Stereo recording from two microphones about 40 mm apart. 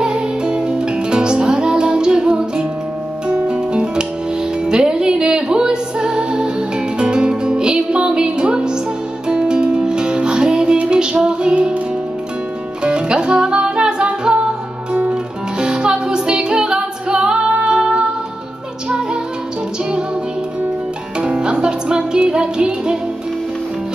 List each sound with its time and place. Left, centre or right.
0.0 s music: right
12.8 s music: right
21.2 s music: right